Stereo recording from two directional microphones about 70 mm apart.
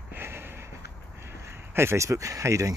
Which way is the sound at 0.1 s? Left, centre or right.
Right.